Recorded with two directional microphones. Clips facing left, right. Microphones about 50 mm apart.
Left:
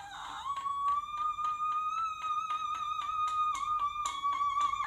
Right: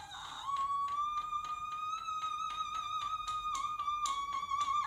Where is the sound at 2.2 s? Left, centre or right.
Left.